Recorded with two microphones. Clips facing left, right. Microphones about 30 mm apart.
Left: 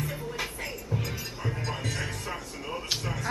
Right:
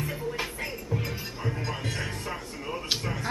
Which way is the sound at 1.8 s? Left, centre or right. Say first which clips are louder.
Even; right.